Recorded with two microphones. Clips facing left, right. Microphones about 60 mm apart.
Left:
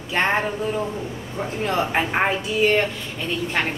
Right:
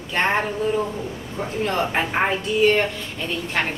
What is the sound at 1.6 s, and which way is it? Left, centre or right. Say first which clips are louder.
Speech: left 1 dB; centre.